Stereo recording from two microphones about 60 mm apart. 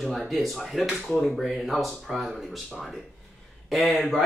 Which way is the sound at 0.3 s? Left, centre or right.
Centre.